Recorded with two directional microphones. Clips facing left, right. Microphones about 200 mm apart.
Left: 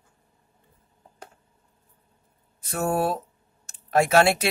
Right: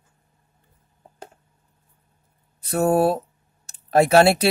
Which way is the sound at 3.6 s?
35° right (ahead or behind).